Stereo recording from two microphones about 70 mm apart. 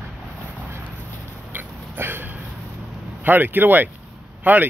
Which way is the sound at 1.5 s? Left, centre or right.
Right.